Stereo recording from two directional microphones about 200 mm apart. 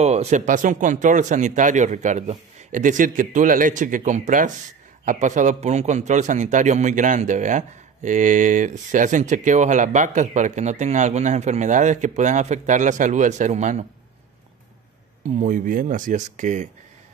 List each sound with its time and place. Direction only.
0.0 s a man's voice: 35° right (ahead or behind)
15.2 s a man's voice: 40° right (ahead or behind)